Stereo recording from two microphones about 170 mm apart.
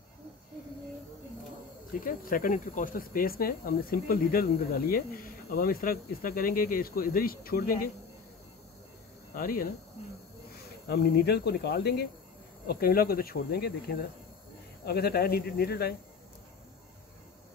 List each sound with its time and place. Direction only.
2.0 s speech: 55° left (ahead or behind)
9.3 s speech: 60° left (ahead or behind)
10.9 s speech: 70° left (ahead or behind)
12.6 s speech: 60° left (ahead or behind)